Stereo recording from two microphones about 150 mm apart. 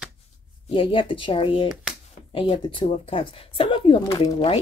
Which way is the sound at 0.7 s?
35° left (ahead or behind).